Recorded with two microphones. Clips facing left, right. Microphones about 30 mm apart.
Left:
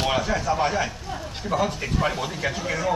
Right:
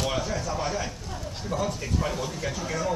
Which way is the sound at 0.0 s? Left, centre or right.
Left.